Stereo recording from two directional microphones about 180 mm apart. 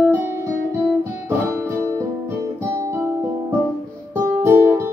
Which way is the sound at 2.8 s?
15° right (ahead or behind).